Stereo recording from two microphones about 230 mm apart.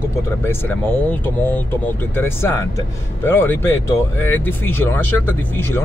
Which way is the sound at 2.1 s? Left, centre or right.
Centre.